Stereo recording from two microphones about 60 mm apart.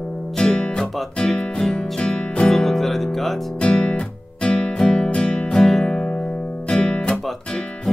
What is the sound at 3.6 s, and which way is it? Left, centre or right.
Music, centre.